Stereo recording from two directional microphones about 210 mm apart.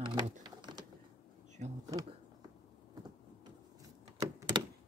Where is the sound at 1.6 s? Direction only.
35° right (ahead or behind).